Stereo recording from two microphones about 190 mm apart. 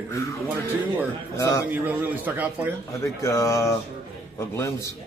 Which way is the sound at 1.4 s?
15° left (ahead or behind).